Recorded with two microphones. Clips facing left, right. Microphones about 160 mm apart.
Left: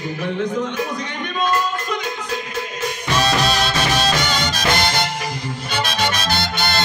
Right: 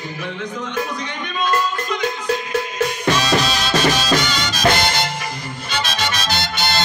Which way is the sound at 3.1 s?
55° left (ahead or behind).